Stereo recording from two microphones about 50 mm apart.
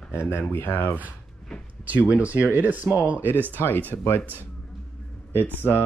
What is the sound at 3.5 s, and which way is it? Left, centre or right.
Speech, left.